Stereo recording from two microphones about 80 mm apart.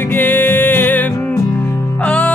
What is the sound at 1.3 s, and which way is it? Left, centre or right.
Music, left.